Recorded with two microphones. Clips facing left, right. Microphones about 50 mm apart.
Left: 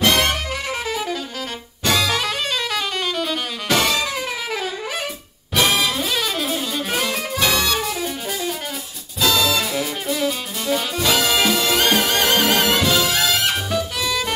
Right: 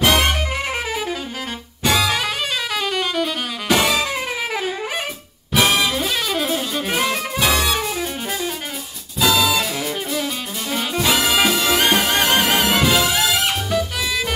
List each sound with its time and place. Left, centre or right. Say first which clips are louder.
0.2 s music: right 1 dB; centre
5.5 s music: right 1 dB; centre
9.2 s music: right 1 dB; centre